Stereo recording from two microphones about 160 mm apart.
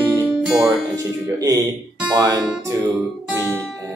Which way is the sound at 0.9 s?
25° right (ahead or behind).